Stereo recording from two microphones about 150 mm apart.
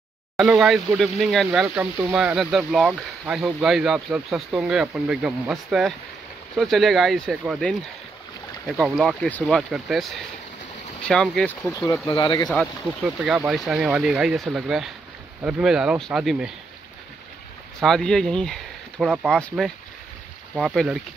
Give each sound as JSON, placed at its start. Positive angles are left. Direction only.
{"t": 0.4, "sound": "speech", "side_deg": 0}
{"t": 9.0, "sound": "speech", "side_deg": 5}
{"t": 11.7, "sound": "speech", "side_deg": 20}
{"t": 12.1, "sound": "speech", "side_deg": 30}
{"t": 12.4, "sound": "speech", "side_deg": 0}
{"t": 17.8, "sound": "speech", "side_deg": 5}